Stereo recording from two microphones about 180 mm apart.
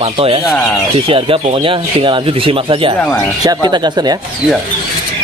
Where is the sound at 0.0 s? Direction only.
30° right (ahead or behind).